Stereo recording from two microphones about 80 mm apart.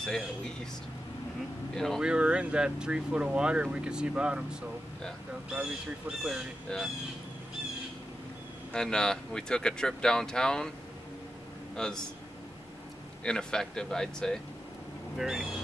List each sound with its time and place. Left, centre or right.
0.0 s speech: centre
2.0 s speech: centre
6.7 s speech: centre
8.7 s speech: centre
11.7 s a man's voice: centre
13.2 s speech: centre
15.1 s speech: centre